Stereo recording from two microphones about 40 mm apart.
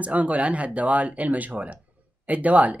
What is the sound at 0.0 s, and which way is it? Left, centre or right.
Speech, right.